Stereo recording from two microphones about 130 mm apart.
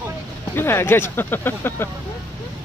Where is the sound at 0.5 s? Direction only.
20° left (ahead or behind).